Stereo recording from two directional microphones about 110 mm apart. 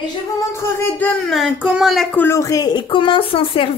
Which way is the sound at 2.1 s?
15° left (ahead or behind).